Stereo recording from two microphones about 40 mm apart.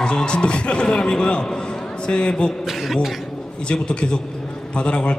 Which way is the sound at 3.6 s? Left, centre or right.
Left.